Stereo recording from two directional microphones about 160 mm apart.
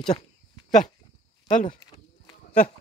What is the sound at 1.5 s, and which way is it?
Speech, 50° left (ahead or behind).